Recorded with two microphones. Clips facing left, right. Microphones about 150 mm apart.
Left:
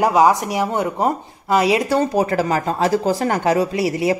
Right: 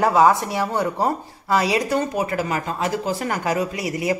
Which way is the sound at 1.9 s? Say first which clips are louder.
Left 5 dB; 35° left (ahead or behind).